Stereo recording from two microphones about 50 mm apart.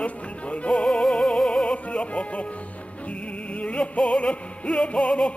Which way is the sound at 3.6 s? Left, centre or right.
Left.